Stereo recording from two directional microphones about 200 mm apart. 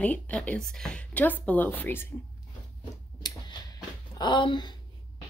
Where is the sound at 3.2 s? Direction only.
20° left (ahead or behind).